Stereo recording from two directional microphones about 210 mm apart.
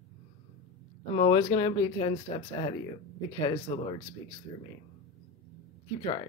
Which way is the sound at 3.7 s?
25° left (ahead or behind).